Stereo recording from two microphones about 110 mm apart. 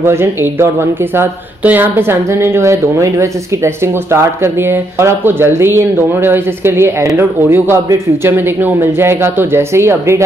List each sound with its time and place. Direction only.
0.0 s speech: 20° right (ahead or behind)